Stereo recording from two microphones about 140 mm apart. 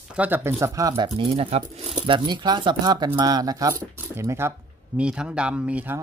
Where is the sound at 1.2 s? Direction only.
45° right (ahead or behind); by 4.5 s 20° right (ahead or behind).